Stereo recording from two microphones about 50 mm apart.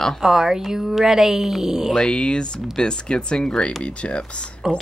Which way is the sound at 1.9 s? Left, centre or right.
Centre.